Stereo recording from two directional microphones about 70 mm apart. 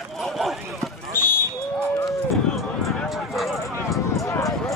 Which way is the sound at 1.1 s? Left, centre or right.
Left.